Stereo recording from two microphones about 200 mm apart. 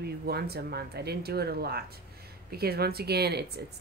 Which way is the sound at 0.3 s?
55° right (ahead or behind).